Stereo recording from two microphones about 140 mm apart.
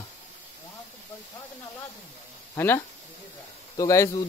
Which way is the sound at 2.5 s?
15° left (ahead or behind).